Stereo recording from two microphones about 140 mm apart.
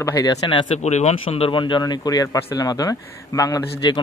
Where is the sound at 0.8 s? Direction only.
55° left (ahead or behind).